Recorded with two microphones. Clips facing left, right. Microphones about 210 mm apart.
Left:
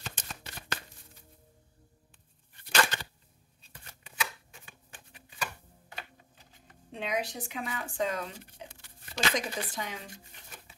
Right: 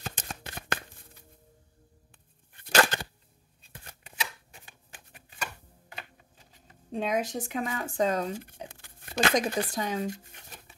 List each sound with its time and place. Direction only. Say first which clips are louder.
0.0 s shuffling cards: right 4 dB; 50° right (ahead or behind)
2.6 s a sound: right 5 dB; 50° right (ahead or behind)
6.9 s speech: right 5 dB; 45° right (ahead or behind)